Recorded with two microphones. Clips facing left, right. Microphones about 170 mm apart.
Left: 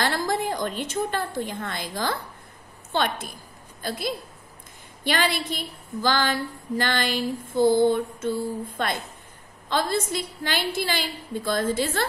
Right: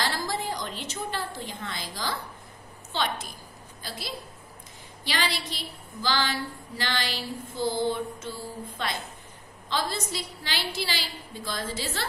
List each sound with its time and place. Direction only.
0.0 s a woman's voice: 55° left (ahead or behind)